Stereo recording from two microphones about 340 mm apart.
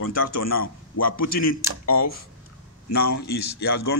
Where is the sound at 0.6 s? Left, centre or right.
Left.